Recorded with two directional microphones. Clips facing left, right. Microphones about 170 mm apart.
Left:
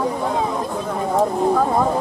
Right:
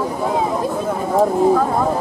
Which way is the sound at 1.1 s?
Centre (ahead or behind).